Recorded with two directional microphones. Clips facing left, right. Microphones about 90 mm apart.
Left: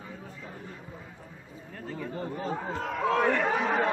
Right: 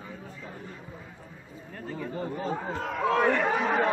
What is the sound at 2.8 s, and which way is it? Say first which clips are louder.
Chatter: right 1 dB; 5° right (ahead or behind).